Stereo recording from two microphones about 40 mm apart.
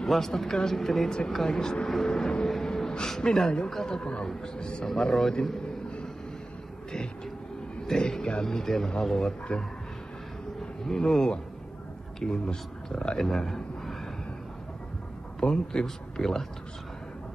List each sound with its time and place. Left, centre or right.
0.1 s speech: centre
2.0 s vehicle: centre
2.5 s a man's voice: centre
7.8 s a man's voice: centre
9.5 s a man's voice: left
10.9 s a man's voice: centre
13.2 s a sound: centre
15.4 s speech: centre